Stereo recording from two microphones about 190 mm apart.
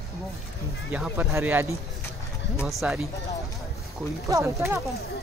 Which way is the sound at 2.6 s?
Centre (ahead or behind).